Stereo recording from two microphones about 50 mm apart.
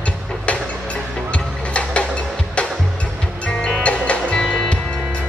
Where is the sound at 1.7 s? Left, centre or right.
Left.